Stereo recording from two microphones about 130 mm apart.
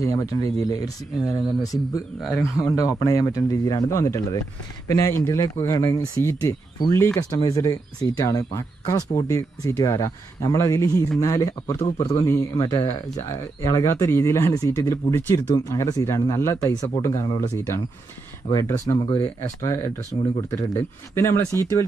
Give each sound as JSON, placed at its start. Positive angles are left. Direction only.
{"t": 0.0, "sound": "a man's voice", "side_deg": 25}
{"t": 18.5, "sound": "a man's voice", "side_deg": 25}